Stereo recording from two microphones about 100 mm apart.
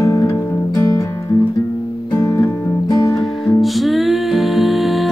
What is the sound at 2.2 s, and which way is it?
Music, 30° left (ahead or behind).